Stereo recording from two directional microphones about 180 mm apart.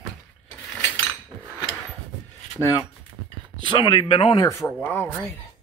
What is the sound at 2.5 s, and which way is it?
Speech, 15° left (ahead or behind).